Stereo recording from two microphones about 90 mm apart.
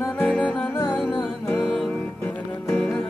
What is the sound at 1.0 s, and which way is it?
Music, 5° right (ahead or behind).